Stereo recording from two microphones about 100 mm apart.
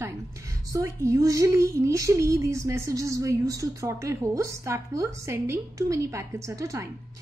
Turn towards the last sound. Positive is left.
turn(degrees=-30)  # may be behind; listen again after turning